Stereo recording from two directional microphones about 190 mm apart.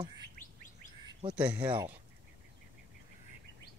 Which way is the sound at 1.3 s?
5° right (ahead or behind).